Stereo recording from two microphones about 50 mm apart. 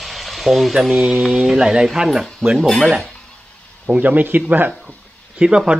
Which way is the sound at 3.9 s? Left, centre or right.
Right.